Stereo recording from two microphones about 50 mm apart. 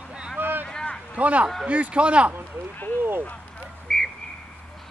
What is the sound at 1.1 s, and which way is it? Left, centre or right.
A man's voice, right.